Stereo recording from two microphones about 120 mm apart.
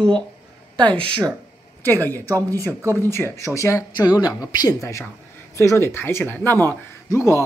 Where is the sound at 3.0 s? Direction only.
20° left (ahead or behind).